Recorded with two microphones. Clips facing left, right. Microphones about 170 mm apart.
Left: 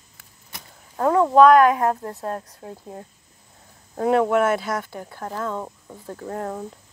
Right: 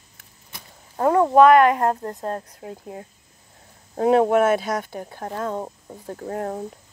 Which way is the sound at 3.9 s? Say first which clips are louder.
Right 2 dB; 25° right (ahead or behind).